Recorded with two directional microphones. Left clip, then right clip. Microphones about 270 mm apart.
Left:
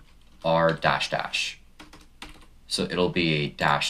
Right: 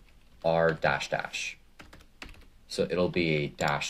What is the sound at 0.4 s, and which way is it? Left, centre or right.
Speech, right.